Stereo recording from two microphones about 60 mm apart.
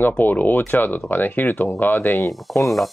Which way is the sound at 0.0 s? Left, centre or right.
Left.